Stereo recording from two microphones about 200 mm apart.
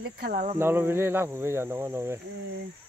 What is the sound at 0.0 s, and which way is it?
Cricket, 50° right (ahead or behind).